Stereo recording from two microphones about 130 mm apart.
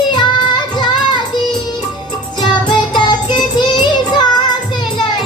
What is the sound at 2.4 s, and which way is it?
Music, 35° left (ahead or behind).